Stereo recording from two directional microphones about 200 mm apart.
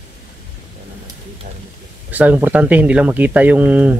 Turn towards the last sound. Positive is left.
turn(degrees=-5)  # may be behind; listen again after turning